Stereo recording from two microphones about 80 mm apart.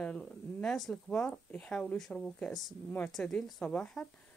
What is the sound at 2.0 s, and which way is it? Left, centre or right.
A woman's voice, centre.